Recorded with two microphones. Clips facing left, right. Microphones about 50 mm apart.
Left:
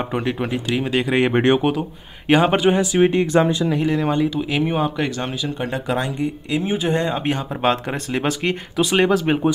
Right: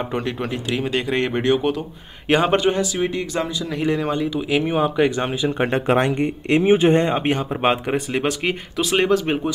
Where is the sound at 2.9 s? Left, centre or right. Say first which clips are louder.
Left 7 dB; left.